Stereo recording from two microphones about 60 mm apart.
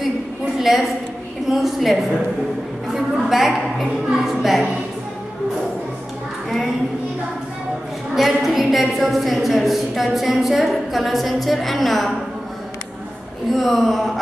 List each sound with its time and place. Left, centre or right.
0.6 s a woman's voice: centre
8.2 s a woman's voice: centre
13.5 s a woman's voice: centre